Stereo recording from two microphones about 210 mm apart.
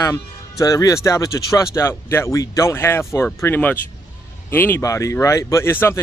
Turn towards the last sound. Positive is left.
turn(degrees=10)  # may be behind; listen again after turning